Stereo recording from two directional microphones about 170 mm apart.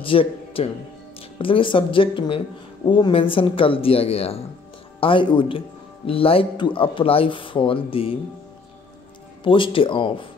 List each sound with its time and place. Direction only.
0.0 s speech: 30° left (ahead or behind)
9.4 s speech: 30° left (ahead or behind)